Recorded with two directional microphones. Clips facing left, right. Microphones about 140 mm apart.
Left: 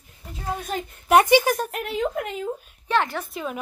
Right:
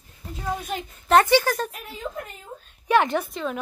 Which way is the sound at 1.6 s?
70° left (ahead or behind).